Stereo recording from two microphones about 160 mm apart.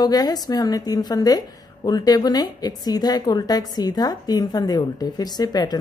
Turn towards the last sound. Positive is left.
turn(degrees=25)  # may be behind; listen again after turning